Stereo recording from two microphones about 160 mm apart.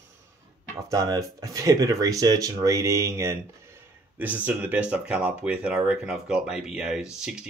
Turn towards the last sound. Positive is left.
turn(degrees=-5)  # may be behind; listen again after turning